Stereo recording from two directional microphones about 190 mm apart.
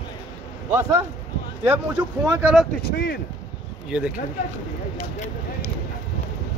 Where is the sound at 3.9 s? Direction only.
5° right (ahead or behind).